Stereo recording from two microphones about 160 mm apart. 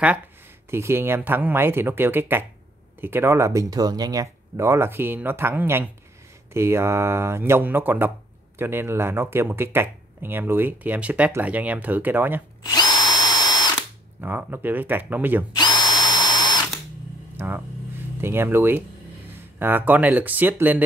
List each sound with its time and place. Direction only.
0.7 s speech: 15° right (ahead or behind)
12.6 s drill: 25° left (ahead or behind)
14.2 s speech: 10° right (ahead or behind)
15.5 s drill: 25° left (ahead or behind)
17.4 s speech: 10° right (ahead or behind)